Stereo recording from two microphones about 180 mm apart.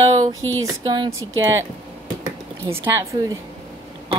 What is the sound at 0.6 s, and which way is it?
Speech, 20° right (ahead or behind).